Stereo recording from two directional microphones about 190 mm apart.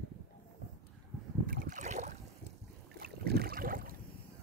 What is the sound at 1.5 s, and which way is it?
Boat, 45° right (ahead or behind).